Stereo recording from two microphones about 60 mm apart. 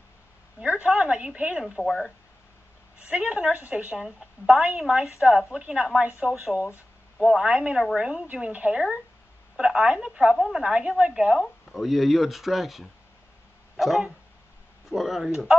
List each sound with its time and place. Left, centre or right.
0.6 s a sound: right
1.8 s speech: centre
3.0 s speech: right
4.0 s speech: centre
5.8 s speech: centre
11.7 s speech: centre